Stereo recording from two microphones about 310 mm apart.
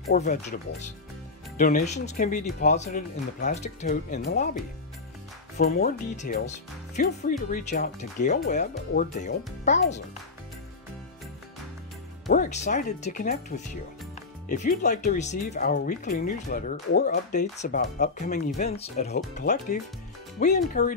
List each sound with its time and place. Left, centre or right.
0.1 s speech: left
5.6 s speech: left
12.3 s speech: left